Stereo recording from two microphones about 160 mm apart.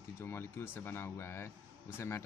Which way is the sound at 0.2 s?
15° left (ahead or behind).